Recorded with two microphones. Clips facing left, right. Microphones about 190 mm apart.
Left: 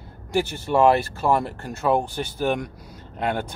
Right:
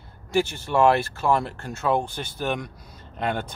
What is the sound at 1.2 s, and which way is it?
Speech, 10° left (ahead or behind).